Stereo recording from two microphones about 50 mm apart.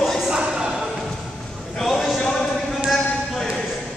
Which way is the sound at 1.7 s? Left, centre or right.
Centre.